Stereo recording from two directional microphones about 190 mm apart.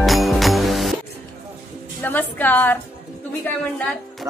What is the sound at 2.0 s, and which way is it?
Music, 10° left (ahead or behind).